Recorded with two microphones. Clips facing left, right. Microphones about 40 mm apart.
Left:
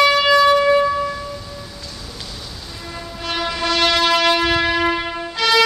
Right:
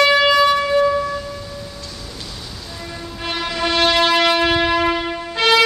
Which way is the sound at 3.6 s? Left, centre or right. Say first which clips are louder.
Right 1 dB; centre.